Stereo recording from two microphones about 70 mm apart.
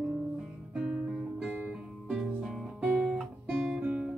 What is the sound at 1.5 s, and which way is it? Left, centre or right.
Music, right.